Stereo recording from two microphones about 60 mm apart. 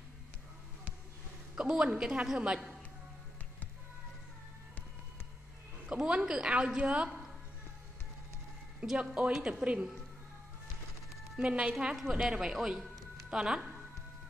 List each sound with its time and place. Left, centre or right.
1.6 s speech: centre
5.9 s a woman's voice: centre
8.9 s speech: centre
11.3 s a man's voice: centre